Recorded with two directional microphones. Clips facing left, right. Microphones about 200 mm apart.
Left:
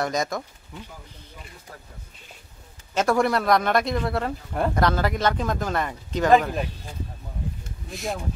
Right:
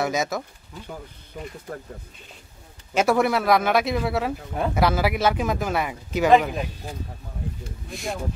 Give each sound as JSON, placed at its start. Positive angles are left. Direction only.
{"t": 0.0, "sound": "speech", "side_deg": -5}
{"t": 2.9, "sound": "speech", "side_deg": -10}
{"t": 7.9, "sound": "speech", "side_deg": 0}